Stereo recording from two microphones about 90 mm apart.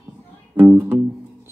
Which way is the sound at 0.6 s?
20° right (ahead or behind).